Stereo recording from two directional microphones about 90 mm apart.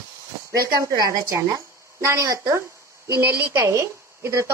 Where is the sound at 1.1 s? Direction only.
40° right (ahead or behind).